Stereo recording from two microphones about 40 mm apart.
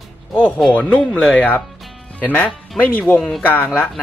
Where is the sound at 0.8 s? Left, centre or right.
Left.